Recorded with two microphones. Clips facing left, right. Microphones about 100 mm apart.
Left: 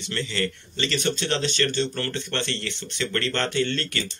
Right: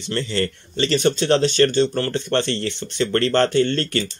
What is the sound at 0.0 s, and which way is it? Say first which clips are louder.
Speech: right 5 dB; 40° right (ahead or behind).